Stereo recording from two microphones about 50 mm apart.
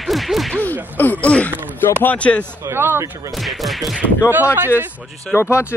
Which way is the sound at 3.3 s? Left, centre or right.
Centre.